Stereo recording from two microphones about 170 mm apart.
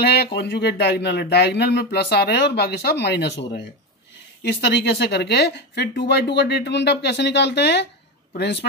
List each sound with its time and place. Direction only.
0.0 s speech: 75° left (ahead or behind)
4.4 s speech: 75° left (ahead or behind)